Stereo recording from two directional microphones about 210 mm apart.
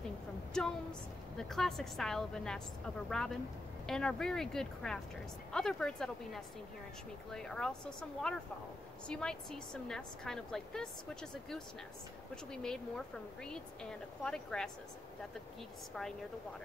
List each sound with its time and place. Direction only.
0.5 s speech: 5° left (ahead or behind)
12.6 s speech: 5° left (ahead or behind)